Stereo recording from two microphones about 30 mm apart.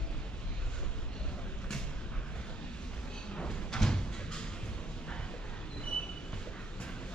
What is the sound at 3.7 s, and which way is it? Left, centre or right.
Door, left.